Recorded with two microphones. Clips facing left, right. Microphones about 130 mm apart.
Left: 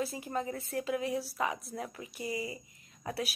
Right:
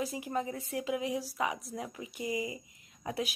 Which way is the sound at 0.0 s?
15° right (ahead or behind).